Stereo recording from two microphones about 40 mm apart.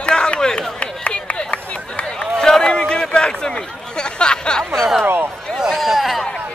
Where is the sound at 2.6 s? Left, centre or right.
Left.